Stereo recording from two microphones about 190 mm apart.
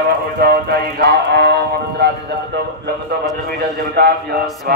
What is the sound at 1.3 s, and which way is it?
Music, 60° right (ahead or behind).